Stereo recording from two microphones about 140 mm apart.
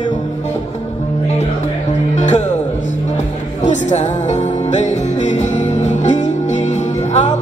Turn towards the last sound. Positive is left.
turn(degrees=55)  # may be behind; listen again after turning